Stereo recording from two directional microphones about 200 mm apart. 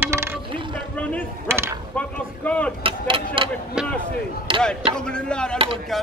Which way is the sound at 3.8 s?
5° right (ahead or behind).